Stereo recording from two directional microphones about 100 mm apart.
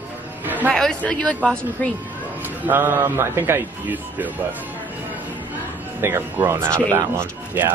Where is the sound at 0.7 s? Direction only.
10° left (ahead or behind).